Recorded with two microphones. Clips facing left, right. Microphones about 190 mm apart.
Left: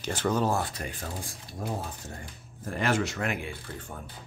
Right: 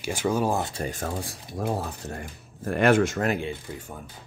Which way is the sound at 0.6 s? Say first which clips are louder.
Right 5 dB; 30° right (ahead or behind).